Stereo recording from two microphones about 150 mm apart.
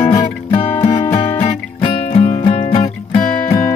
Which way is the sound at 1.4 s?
40° left (ahead or behind).